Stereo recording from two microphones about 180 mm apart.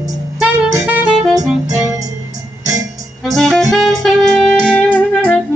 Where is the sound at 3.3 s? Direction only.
Centre (ahead or behind).